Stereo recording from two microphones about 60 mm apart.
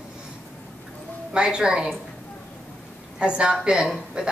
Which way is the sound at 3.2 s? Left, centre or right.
Centre.